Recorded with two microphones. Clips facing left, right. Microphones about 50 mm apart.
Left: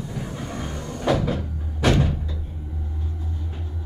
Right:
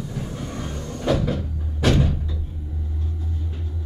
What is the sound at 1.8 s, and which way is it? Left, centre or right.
Door, centre.